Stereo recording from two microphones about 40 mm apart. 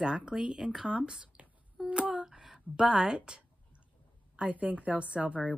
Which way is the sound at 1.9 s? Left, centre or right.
Right.